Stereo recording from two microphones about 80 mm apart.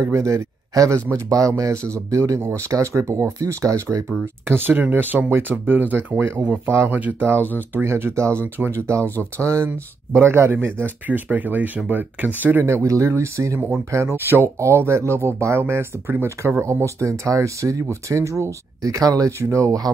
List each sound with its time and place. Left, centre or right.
0.0 s speech: right
4.5 s speech: right
12.6 s speech: right